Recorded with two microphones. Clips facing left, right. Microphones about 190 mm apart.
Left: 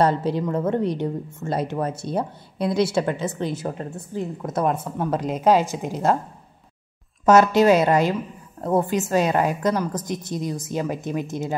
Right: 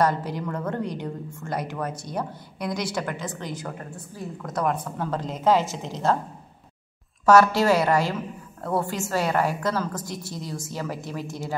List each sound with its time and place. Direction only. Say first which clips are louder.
0.0 s a woman's voice: left 4 dB; 25° left (ahead or behind)
7.2 s a woman's voice: left 3 dB; 20° left (ahead or behind)